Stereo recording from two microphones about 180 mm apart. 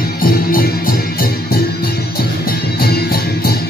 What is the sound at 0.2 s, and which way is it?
Music, 50° left (ahead or behind).